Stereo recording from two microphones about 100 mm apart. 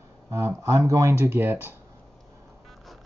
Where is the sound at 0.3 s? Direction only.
25° right (ahead or behind).